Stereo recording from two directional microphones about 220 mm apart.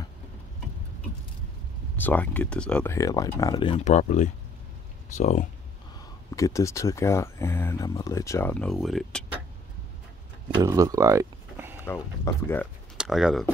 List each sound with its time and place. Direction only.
2.0 s speech: 10° left (ahead or behind); by 5.5 s 35° left (ahead or behind)
6.3 s speech: 15° left (ahead or behind)
10.5 s speech: 15° right (ahead or behind)
11.9 s speech: 10° left (ahead or behind)
12.9 s speech: 5° right (ahead or behind)